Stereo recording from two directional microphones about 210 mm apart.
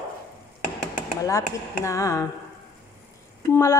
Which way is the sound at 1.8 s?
15° left (ahead or behind).